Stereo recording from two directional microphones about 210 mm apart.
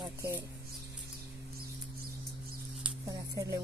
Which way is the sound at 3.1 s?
15° right (ahead or behind).